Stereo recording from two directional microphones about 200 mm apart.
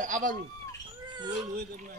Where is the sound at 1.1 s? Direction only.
20° right (ahead or behind).